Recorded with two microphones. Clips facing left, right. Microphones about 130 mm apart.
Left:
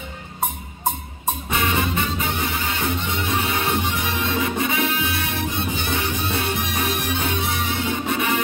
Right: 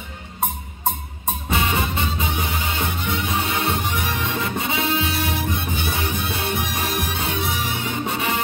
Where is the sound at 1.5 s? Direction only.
30° right (ahead or behind).